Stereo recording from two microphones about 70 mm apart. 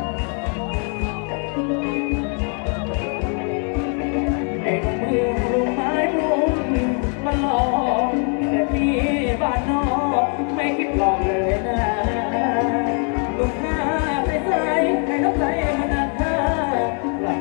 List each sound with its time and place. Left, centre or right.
4.2 s music: centre